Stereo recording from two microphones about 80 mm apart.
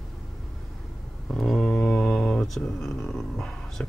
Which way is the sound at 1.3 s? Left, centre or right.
Centre.